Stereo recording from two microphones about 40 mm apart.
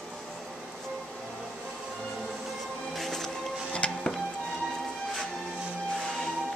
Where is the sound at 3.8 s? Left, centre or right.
Left.